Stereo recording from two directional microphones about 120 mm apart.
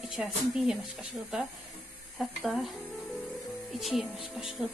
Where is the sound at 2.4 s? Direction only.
Centre (ahead or behind).